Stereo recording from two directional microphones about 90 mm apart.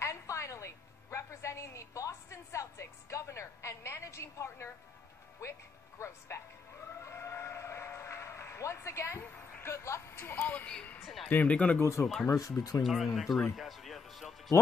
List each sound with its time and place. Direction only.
0.0 s a woman's voice: 35° left (ahead or behind)
7.0 s vehicle: 30° left (ahead or behind)
9.2 s speech: 25° left (ahead or behind)
10.4 s speech: 15° left (ahead or behind)
11.8 s speech: 30° left (ahead or behind)
12.8 s speech: centre (ahead or behind)
13.6 s music: centre (ahead or behind)